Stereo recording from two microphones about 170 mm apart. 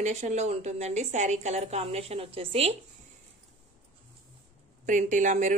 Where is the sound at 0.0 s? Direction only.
45° right (ahead or behind).